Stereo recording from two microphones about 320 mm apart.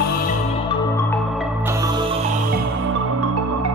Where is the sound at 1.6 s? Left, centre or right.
Centre.